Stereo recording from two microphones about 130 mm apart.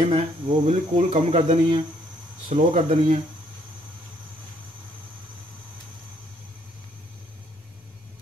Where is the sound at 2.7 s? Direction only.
80° right.